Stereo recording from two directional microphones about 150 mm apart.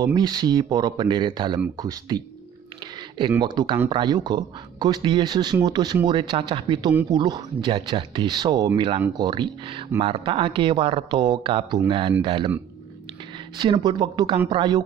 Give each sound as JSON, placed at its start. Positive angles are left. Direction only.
{"t": 0.0, "sound": "speech", "side_deg": -25}
{"t": 13.6, "sound": "speech", "side_deg": -30}